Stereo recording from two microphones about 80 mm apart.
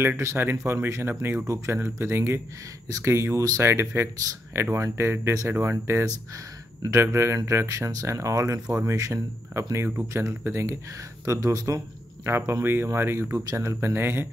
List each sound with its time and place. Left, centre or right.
0.2 s speech: right
6.0 s speech: right
12.3 s speech: right